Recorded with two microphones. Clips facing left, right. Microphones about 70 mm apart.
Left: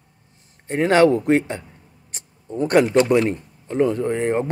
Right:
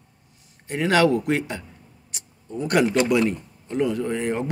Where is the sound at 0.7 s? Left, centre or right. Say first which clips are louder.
Left 4 dB; left.